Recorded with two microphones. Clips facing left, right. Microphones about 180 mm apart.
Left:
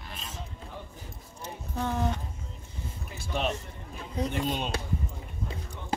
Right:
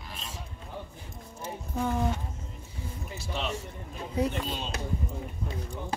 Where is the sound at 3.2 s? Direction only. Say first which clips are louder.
Left 4 dB; 50° left (ahead or behind).